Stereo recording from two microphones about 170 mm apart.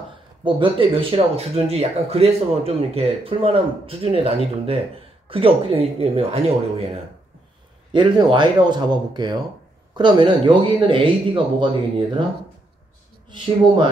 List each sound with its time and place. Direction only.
0.4 s speech: 30° right (ahead or behind)
7.9 s speech: 25° right (ahead or behind)